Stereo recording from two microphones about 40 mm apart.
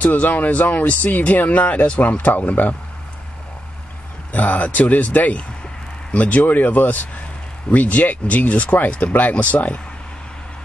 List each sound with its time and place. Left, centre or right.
0.0 s speech: left
4.3 s speech: left